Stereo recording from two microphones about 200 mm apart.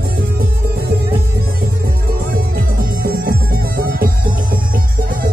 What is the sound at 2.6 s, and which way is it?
Music, 45° right (ahead or behind).